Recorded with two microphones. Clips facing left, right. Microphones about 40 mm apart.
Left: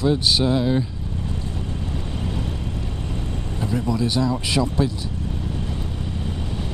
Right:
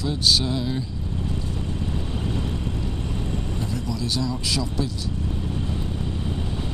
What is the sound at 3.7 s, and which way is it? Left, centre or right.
Speech, left.